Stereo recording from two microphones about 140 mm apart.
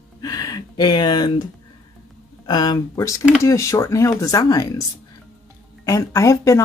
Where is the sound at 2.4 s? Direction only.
30° left (ahead or behind).